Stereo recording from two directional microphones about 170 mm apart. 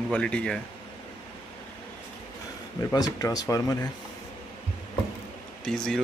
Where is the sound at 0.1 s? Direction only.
5° left (ahead or behind).